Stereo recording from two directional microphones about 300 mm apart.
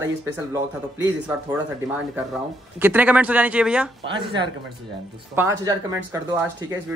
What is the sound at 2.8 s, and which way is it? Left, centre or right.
Speech, centre.